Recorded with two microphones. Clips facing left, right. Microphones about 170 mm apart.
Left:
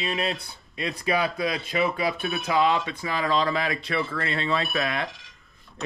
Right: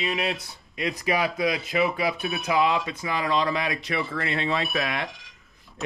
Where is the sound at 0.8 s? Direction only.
20° right (ahead or behind).